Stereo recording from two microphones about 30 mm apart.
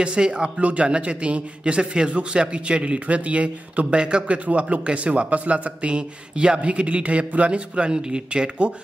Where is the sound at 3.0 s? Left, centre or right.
Right.